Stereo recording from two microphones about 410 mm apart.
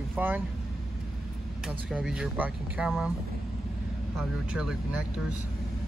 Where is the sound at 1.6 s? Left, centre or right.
Centre.